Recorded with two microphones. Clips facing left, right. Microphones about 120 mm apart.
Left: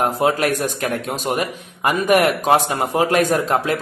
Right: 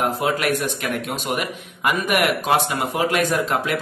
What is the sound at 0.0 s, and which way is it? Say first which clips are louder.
Speech: left 3 dB; 35° left (ahead or behind).